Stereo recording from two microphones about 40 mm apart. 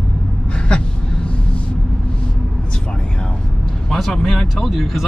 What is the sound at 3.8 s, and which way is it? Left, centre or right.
Speech, centre.